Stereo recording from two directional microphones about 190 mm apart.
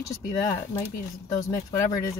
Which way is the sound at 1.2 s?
20° left (ahead or behind).